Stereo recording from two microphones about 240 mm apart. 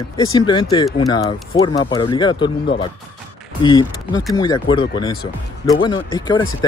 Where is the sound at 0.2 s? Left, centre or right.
Centre.